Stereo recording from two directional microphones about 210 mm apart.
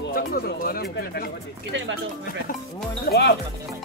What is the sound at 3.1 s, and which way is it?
Speech, 50° left (ahead or behind).